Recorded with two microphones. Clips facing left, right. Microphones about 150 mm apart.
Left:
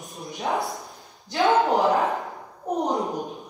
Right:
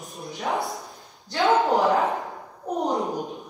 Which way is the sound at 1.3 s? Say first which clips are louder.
Even; centre (ahead or behind).